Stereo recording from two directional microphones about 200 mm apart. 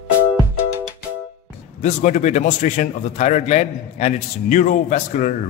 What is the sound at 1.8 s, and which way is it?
A man's voice, 35° left (ahead or behind).